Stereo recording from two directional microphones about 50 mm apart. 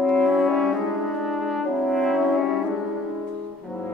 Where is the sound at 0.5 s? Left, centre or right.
Centre.